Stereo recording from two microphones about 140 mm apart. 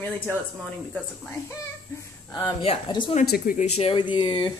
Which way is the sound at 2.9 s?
35° left (ahead or behind).